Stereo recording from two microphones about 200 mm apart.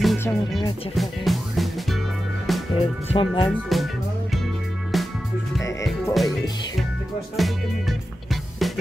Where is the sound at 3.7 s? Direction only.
Centre (ahead or behind).